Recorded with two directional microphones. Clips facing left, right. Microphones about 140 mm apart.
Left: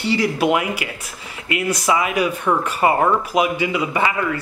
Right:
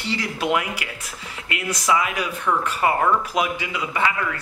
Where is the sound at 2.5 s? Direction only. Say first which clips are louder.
Left 1 dB; 25° left (ahead or behind).